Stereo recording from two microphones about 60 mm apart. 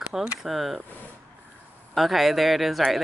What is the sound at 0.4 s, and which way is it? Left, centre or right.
Speech, centre.